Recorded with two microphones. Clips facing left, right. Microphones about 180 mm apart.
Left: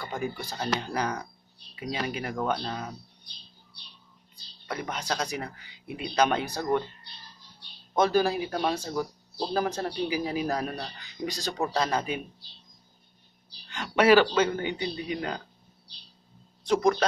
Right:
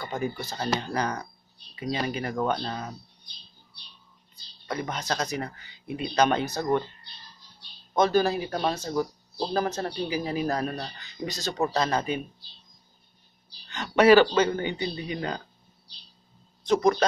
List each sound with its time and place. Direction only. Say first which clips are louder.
0.2 s speech: right 1 dB; 10° left (ahead or behind)
4.6 s speech: right 2 dB; 5° left (ahead or behind)
7.9 s speech: right 1 dB; 10° left (ahead or behind)
13.7 s speech: right 3 dB; 5° left (ahead or behind)
16.6 s speech: right 1 dB; 10° left (ahead or behind)